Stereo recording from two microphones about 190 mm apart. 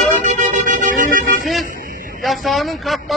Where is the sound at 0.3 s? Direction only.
40° right (ahead or behind).